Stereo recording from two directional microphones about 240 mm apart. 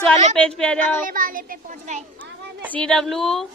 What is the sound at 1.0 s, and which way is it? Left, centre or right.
A child's voice, right.